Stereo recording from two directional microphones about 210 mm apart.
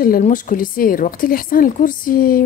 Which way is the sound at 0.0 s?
40° left (ahead or behind).